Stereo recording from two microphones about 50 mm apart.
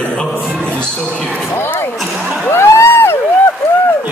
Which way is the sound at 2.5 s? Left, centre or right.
Left.